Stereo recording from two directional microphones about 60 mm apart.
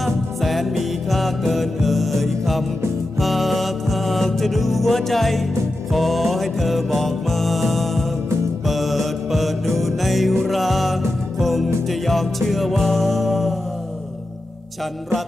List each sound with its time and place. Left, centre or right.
0.0 s music: centre